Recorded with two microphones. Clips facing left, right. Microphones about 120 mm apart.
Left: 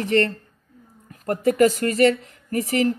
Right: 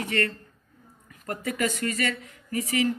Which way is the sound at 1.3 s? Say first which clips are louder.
Left 11 dB; 40° left (ahead or behind).